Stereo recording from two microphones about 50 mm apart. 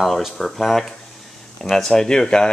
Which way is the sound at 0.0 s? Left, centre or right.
Centre.